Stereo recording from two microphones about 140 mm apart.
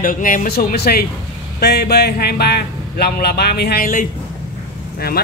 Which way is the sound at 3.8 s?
75° left (ahead or behind).